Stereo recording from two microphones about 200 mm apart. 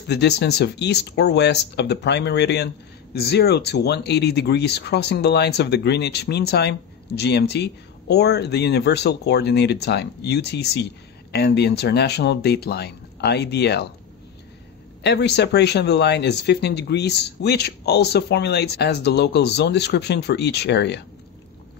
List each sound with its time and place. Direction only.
0.1 s speech: 55° left (ahead or behind)
15.0 s speech: 55° left (ahead or behind)